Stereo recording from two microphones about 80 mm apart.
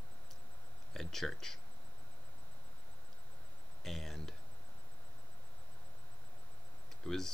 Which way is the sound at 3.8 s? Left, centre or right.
Centre.